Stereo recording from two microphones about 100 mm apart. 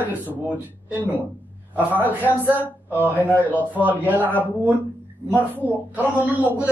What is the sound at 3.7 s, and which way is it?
Speech, 20° right (ahead or behind).